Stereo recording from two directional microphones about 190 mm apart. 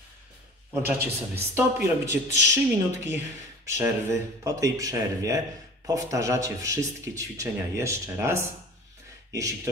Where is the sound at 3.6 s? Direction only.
15° right (ahead or behind).